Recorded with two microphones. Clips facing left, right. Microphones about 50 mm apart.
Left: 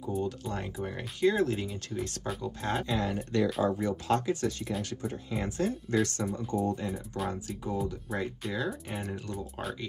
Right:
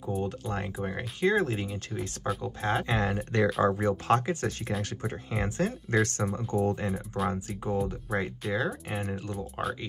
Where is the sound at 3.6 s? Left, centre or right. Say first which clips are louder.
Right 3 dB; right.